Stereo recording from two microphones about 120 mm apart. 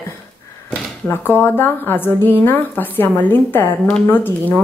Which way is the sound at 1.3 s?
20° left (ahead or behind).